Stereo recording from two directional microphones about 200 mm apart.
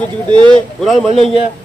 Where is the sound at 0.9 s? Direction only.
30° left (ahead or behind).